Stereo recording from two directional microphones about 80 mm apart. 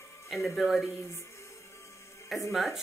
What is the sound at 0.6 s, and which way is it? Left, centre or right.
Speech, centre.